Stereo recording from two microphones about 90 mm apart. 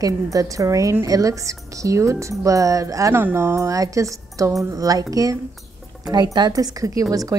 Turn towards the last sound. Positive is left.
turn(degrees=-40)  # may be behind; listen again after turning